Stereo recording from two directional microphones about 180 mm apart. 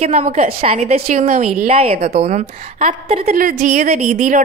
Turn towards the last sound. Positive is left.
turn(degrees=-40)  # may be behind; listen again after turning